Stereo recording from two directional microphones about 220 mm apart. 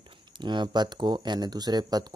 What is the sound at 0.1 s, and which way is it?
A man's voice, 20° right (ahead or behind).